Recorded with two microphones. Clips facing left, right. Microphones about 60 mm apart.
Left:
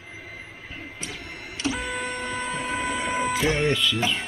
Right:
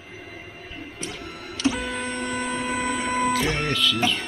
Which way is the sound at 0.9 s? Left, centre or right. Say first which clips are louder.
Right 4 dB; centre.